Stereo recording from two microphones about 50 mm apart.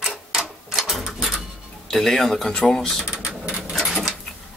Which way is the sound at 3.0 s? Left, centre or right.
Centre.